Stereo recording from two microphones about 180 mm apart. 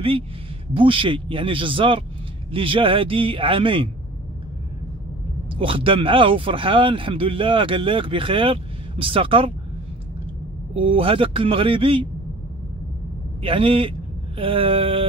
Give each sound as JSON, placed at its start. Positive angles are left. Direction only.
{"t": 0.7, "sound": "a man's voice", "side_deg": -30}
{"t": 5.6, "sound": "a man's voice", "side_deg": -30}
{"t": 10.7, "sound": "speech", "side_deg": -30}
{"t": 13.4, "sound": "speech", "side_deg": -30}